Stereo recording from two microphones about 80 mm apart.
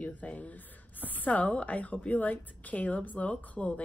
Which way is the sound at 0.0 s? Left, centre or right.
Centre.